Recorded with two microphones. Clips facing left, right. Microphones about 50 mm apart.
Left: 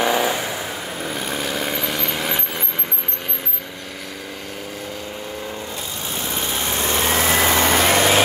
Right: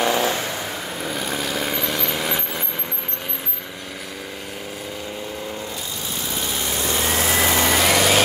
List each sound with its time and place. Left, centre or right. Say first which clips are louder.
0.0 s vehicle: left 1 dB; centre
6.1 s vehicle: left 2 dB; left